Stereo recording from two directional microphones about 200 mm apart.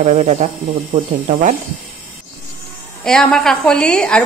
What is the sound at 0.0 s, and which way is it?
Speech, 35° right (ahead or behind).